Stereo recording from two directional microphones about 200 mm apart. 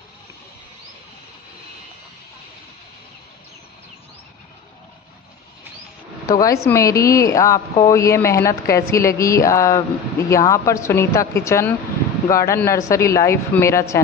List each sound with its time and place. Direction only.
6.2 s speech: 15° left (ahead or behind)